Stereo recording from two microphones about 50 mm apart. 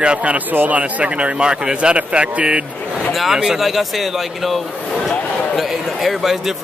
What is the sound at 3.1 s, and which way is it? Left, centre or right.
Speech, centre.